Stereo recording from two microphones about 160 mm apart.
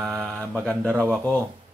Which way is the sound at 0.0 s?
Centre (ahead or behind).